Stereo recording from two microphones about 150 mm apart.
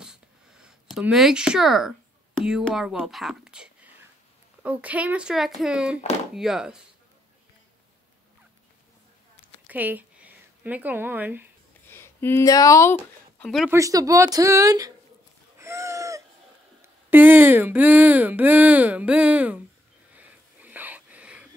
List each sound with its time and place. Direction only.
0.0 s a sound: 5° right (ahead or behind)
2.6 s speech: centre (ahead or behind)
9.7 s speech: 10° right (ahead or behind)
11.9 s speech: 15° left (ahead or behind)
13.4 s speech: centre (ahead or behind)
13.7 s speech: 20° right (ahead or behind)
15.6 s a sound: 20° right (ahead or behind)
16.8 s speech: 15° right (ahead or behind)
20.2 s a sound: 10° right (ahead or behind)